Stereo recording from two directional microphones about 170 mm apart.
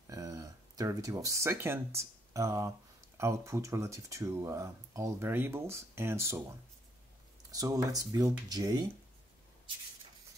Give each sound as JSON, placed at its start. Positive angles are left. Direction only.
{"t": 0.0, "sound": "a sound", "side_deg": -20}
{"t": 2.0, "sound": "speech", "side_deg": -20}
{"t": 7.5, "sound": "speech", "side_deg": -20}